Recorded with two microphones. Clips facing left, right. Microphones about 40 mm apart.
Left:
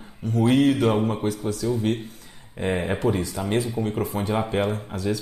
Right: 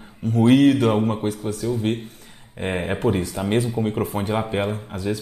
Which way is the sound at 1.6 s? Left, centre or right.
Right.